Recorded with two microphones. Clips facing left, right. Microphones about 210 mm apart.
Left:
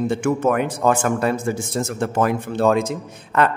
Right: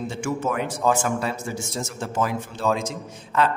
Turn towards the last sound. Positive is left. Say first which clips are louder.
# left 3 dB
turn(degrees=60)  # may be behind; listen again after turning